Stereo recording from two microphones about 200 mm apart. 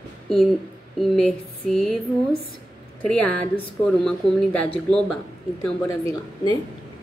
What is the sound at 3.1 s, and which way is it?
Speech, 5° left (ahead or behind).